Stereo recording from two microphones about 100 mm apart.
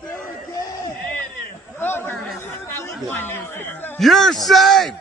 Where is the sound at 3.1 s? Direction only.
20° left (ahead or behind).